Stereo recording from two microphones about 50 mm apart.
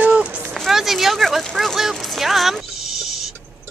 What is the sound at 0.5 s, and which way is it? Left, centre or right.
Speech, centre.